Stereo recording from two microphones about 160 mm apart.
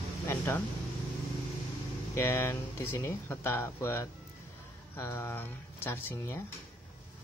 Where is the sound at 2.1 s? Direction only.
15° left (ahead or behind).